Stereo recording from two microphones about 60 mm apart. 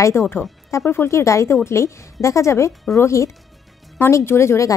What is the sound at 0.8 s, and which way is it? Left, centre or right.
Speech, left.